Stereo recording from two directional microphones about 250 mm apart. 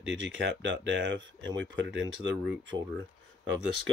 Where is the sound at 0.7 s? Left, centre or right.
Right.